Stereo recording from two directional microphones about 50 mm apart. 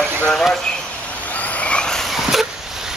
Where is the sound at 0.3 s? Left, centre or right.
Centre.